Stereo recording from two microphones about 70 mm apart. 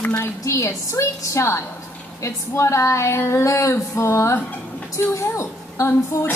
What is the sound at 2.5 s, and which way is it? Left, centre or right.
Music, left.